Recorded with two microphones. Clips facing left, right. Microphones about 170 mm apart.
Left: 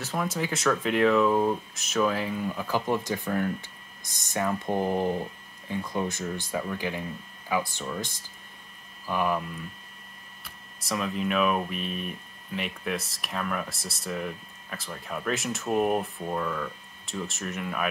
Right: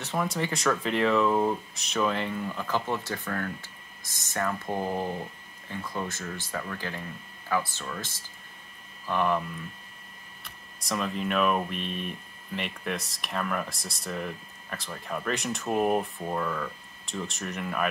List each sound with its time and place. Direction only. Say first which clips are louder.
0.0 s speech: even; centre (ahead or behind)
10.4 s speech: left 1 dB; centre (ahead or behind)